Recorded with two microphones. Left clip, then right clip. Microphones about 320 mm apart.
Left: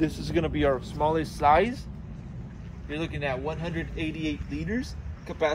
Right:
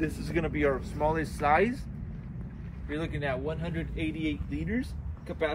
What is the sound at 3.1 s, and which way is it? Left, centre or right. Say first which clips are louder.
Speech: left 2 dB; centre.